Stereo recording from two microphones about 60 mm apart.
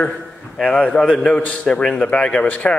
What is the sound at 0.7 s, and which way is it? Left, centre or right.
A man's voice, centre.